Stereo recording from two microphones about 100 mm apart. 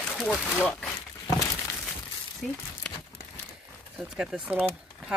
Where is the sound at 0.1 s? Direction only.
5° left (ahead or behind).